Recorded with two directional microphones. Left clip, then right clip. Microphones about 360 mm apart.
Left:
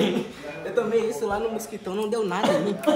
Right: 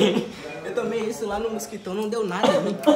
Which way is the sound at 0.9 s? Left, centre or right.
Centre.